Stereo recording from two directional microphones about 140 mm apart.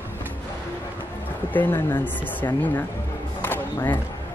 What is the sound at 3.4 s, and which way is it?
Music, 15° left (ahead or behind).